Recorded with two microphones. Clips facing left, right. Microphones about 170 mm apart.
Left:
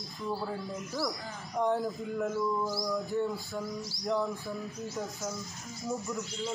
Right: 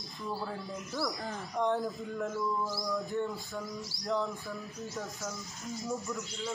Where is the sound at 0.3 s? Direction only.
5° left (ahead or behind).